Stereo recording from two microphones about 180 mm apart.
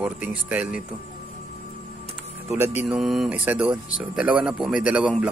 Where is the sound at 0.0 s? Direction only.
10° right (ahead or behind).